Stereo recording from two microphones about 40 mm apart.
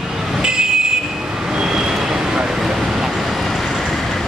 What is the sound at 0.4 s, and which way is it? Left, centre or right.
Vehicle, centre.